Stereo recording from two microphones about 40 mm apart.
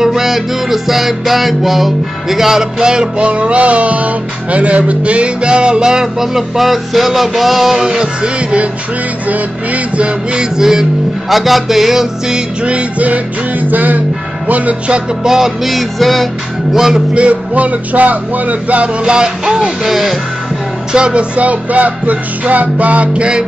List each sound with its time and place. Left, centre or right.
0.0 s music: centre
2.8 s music: centre
3.3 s music: right; by 7.7 s centre
7.7 s music: centre
9.3 s music: right
10.6 s music: centre
11.2 s music: centre
12.6 s music: right
15.2 s music: centre
16.7 s music: centre
17.1 s music: right
19.0 s music: centre
20.9 s music: right